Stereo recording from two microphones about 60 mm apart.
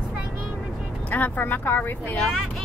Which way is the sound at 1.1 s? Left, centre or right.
Left.